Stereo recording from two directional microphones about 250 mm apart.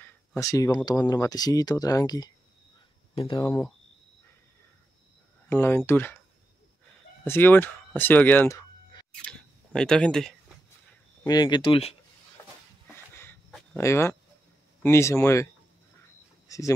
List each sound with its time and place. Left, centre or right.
0.0 s speech: centre
5.5 s speech: centre
7.2 s speech: centre
11.2 s speech: centre
12.8 s a sound: centre
14.8 s speech: centre
16.4 s a sound: centre